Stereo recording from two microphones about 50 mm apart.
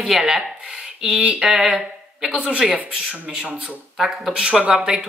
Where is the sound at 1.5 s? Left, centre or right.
Centre.